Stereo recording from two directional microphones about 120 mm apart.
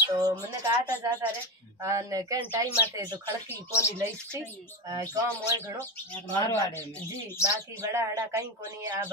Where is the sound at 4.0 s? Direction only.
25° right (ahead or behind).